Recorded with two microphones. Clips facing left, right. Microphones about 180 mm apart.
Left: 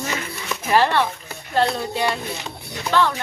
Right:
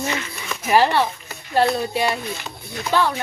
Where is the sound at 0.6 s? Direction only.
10° right (ahead or behind).